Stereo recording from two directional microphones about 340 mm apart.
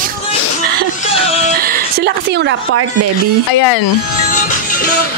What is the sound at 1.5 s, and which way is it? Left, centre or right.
Speech, right.